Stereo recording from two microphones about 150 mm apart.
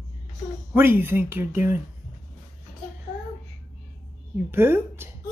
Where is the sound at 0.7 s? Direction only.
15° right (ahead or behind).